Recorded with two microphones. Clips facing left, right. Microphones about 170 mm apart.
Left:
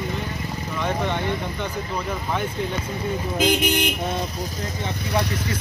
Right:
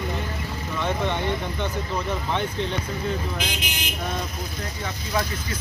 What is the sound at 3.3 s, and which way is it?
Speech, 60° left (ahead or behind).